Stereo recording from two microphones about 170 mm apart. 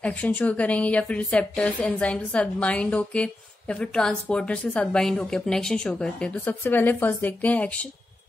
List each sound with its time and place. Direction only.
0.0 s a woman's voice: 10° left (ahead or behind)